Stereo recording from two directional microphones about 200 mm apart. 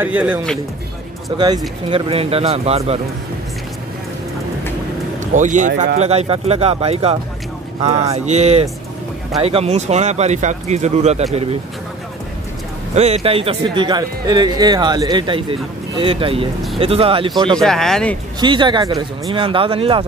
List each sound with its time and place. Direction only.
0.0 s a man's voice: 5° right (ahead or behind)
1.3 s speech: 25° right (ahead or behind)
5.2 s speech: 40° right (ahead or behind)
5.9 s speech: 30° right (ahead or behind)
12.9 s speech: 30° right (ahead or behind)
17.6 s speech: centre (ahead or behind)
18.4 s speech: 25° right (ahead or behind)